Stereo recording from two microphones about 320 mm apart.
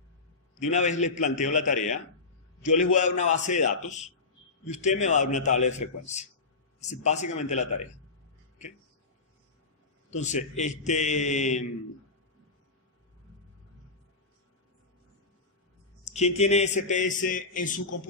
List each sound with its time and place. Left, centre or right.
0.6 s a man's voice: left
10.1 s a man's voice: left
16.1 s a man's voice: centre